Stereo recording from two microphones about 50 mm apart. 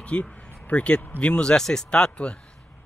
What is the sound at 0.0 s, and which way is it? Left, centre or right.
Speech, left.